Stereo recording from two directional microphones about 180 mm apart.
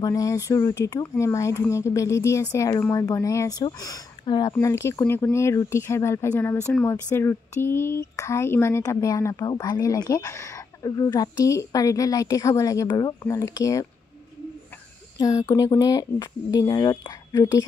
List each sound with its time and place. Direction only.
0.0 s speech: 20° left (ahead or behind)
15.1 s speech: 20° left (ahead or behind)